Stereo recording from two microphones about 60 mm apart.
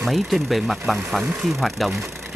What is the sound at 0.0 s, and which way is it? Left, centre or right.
Speech, centre.